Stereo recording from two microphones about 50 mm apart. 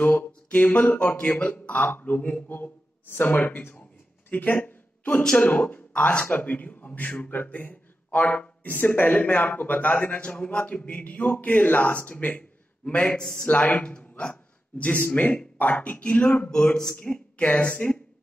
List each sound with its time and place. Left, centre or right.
0.5 s a man's voice: left
4.3 s a sound: left
5.4 s a man's voice: left
8.7 s a man's voice: left
13.2 s a man's voice: centre
13.5 s a man's voice: left
16.7 s a man's voice: centre
17.0 s a woman's voice: left